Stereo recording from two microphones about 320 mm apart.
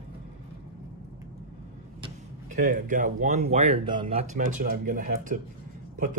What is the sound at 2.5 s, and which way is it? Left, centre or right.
Speech, right.